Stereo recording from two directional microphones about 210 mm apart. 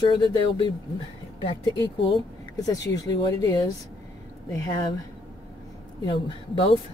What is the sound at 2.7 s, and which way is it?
Speech, 15° left (ahead or behind).